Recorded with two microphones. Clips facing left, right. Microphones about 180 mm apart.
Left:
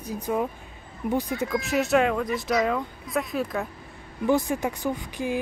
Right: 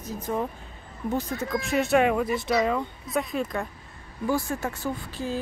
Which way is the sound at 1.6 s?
Centre (ahead or behind).